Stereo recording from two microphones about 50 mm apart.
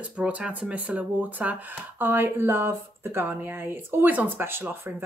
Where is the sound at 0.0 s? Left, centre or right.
Right.